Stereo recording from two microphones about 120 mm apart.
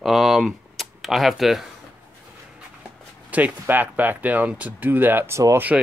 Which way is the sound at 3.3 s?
10° right (ahead or behind).